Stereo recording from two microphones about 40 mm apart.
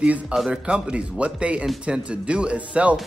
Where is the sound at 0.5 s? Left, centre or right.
Right.